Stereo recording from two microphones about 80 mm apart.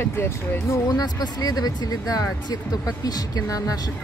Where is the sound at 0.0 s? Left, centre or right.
Left.